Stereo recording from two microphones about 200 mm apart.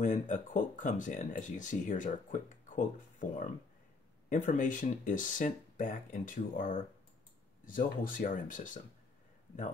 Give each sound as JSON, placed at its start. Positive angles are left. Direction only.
{"t": 0.0, "sound": "speech", "side_deg": 40}